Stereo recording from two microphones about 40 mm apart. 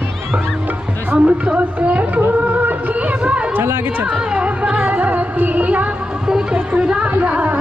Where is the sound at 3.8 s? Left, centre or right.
Right.